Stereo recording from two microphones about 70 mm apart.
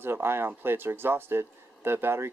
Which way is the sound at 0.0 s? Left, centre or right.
Right.